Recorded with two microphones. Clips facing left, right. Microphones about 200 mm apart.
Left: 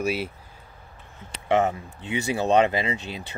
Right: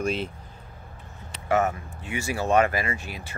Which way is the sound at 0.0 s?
10° left (ahead or behind).